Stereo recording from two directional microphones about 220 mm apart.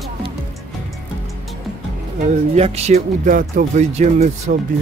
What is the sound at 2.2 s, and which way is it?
Speech, 30° right (ahead or behind).